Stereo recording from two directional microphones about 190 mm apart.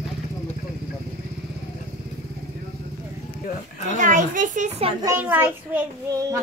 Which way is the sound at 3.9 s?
40° right (ahead or behind).